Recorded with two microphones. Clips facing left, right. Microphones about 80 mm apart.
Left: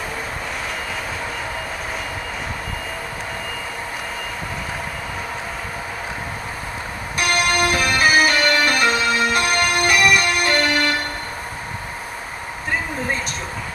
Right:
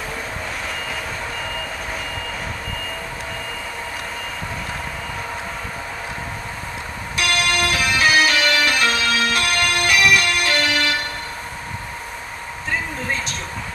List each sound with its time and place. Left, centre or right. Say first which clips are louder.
7.2 s music: left 2 dB; centre